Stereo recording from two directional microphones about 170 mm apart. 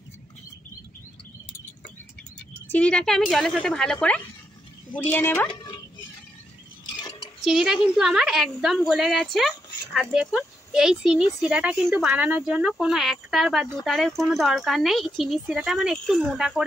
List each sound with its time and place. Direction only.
2.7 s speech: 5° left (ahead or behind)
5.5 s music: 25° left (ahead or behind)
7.0 s a sound: 25° left (ahead or behind)
7.4 s speech: 5° right (ahead or behind)